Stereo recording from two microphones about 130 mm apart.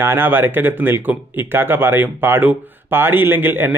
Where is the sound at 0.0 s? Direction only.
15° right (ahead or behind).